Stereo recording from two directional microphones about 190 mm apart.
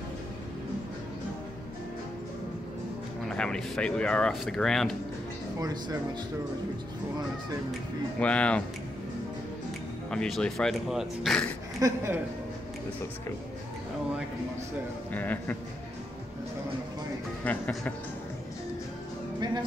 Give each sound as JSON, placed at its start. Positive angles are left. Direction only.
{"t": 3.3, "sound": "speech", "side_deg": 5}
{"t": 5.6, "sound": "speech", "side_deg": -20}
{"t": 8.2, "sound": "speech", "side_deg": 5}
{"t": 10.1, "sound": "speech", "side_deg": 5}
{"t": 11.8, "sound": "speech", "side_deg": -15}
{"t": 15.1, "sound": "speech", "side_deg": 10}
{"t": 17.5, "sound": "speech", "side_deg": 10}